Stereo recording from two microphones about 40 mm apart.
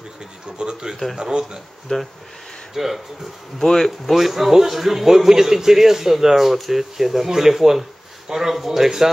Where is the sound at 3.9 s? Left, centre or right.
Centre.